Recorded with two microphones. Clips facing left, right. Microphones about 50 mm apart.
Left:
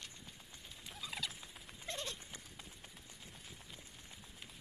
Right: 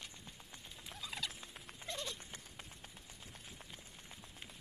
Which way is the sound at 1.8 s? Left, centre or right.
Left.